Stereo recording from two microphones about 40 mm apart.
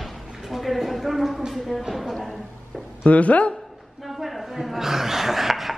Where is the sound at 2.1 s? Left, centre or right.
Centre.